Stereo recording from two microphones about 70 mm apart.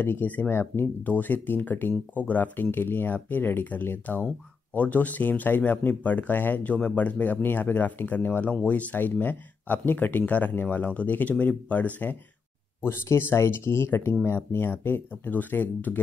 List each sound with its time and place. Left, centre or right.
0.0 s speech: left
12.8 s speech: left